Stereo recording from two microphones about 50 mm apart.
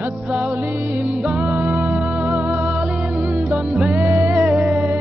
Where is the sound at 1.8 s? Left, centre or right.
Centre.